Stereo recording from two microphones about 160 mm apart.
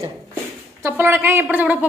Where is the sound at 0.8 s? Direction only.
15° right (ahead or behind).